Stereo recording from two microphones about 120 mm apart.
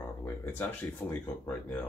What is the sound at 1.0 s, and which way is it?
Speech, 15° left (ahead or behind).